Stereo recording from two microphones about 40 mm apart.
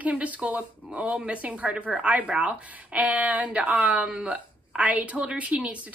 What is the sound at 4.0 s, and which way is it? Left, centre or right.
Speech, right.